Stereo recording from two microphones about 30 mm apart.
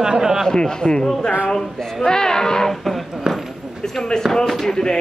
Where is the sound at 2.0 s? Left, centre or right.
Left.